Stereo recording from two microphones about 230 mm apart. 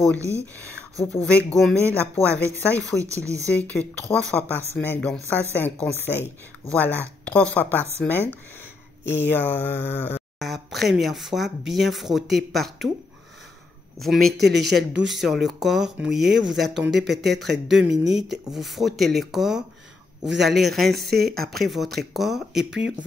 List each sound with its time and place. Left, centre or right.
0.7 s speech: centre
3.0 s speech: centre
3.4 s speech: centre
6.7 s speech: centre
13.9 s speech: centre
14.3 s speech: right
15.0 s speech: centre
21.3 s speech: right
21.5 s speech: centre